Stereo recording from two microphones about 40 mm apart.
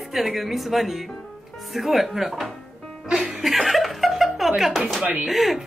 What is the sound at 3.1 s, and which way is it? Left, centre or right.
Music, centre.